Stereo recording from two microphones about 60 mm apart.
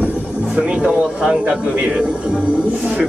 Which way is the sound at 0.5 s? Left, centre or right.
Centre.